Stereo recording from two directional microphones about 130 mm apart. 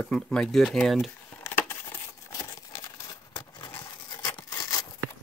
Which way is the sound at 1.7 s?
20° left (ahead or behind).